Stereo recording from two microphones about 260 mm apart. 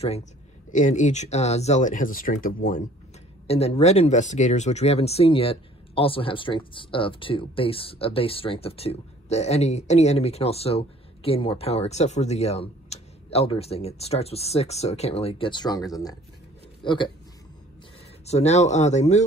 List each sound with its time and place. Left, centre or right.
0.0 s speech: left
18.2 s speech: left